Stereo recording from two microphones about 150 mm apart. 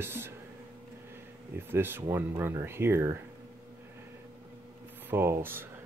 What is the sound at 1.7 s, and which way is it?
Speech, 15° right (ahead or behind).